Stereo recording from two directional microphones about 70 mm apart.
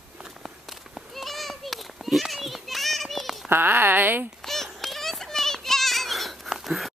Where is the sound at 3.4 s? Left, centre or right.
Right.